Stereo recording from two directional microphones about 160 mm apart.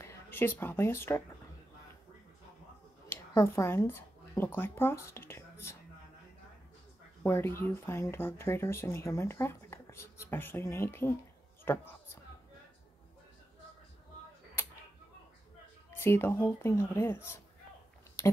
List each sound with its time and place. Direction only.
0.0 s a woman's voice: 15° left (ahead or behind)
3.1 s a sound: 15° left (ahead or behind)
4.6 s speech: 15° left (ahead or behind)
7.2 s speech: 15° left (ahead or behind)
15.9 s speech: 15° left (ahead or behind)